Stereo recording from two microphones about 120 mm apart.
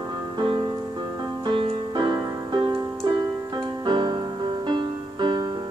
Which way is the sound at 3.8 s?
40° right (ahead or behind).